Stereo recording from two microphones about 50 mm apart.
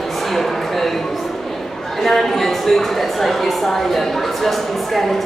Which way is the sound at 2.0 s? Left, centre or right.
Centre.